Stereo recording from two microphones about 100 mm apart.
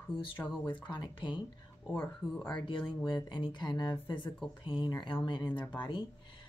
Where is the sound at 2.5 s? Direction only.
55° left (ahead or behind).